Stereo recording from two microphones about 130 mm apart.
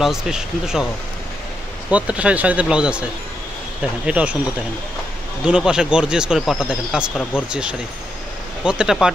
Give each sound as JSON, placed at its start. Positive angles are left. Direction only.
{"t": 0.0, "sound": "speech", "side_deg": -5}
{"t": 1.9, "sound": "speech", "side_deg": -10}
{"t": 5.4, "sound": "speech", "side_deg": -5}